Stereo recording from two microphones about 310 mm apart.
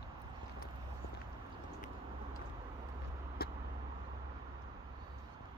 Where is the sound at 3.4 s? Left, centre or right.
Left.